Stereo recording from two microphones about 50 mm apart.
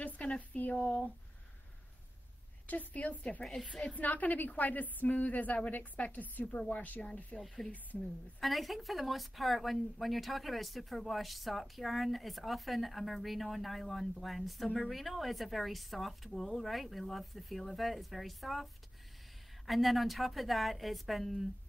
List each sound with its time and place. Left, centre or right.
0.2 s a sound: left
0.6 s a woman's voice: left
2.7 s a woman's voice: left
7.7 s a woman's voice: left
8.4 s a woman's voice: centre